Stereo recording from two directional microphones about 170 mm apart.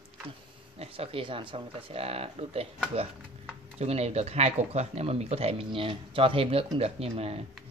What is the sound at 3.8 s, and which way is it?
Speech, 40° right (ahead or behind).